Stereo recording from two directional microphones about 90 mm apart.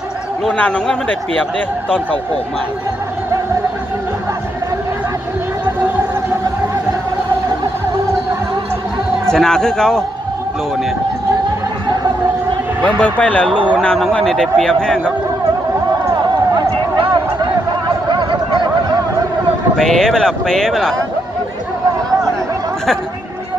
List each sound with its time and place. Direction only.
0.5 s a man's voice: 10° left (ahead or behind)
9.3 s a man's voice: 5° left (ahead or behind)
12.8 s a man's voice: 15° left (ahead or behind)
13.5 s speech: 65° right (ahead or behind)
13.7 s a man's voice: 5° left (ahead or behind)
16.5 s a sound: 55° right (ahead or behind)
19.8 s a man's voice: 5° left (ahead or behind)